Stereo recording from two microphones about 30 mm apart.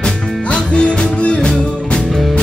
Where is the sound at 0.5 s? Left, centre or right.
Left.